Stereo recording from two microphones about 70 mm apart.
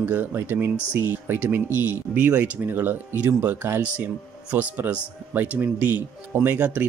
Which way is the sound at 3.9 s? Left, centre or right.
Centre.